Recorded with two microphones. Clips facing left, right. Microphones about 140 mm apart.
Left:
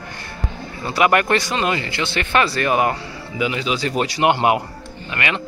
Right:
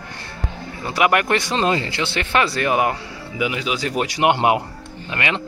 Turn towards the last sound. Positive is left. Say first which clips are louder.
# even
turn(degrees=-20)  # may be behind; listen again after turning